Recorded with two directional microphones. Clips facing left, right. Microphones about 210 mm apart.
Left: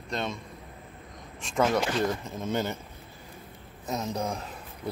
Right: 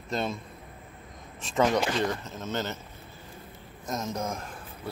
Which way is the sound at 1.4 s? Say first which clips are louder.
Right 1 dB; centre (ahead or behind).